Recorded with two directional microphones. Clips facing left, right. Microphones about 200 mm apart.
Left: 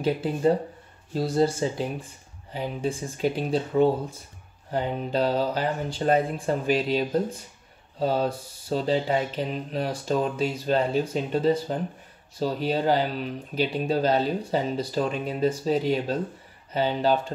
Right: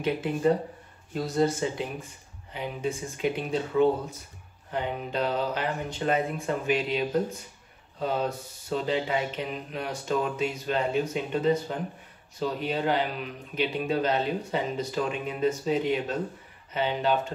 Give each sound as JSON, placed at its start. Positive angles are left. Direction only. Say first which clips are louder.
{"t": 0.0, "sound": "speech", "louder": "left 2 dB", "side_deg": 35}